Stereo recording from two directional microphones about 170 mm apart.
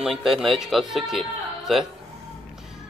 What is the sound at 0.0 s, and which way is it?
Speech, centre (ahead or behind).